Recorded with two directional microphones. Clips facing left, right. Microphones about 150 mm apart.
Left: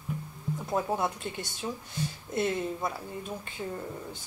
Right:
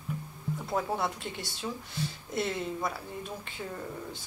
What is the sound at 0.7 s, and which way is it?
Speech, 15° left (ahead or behind).